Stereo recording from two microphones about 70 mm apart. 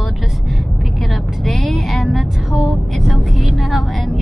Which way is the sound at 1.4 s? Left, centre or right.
Centre.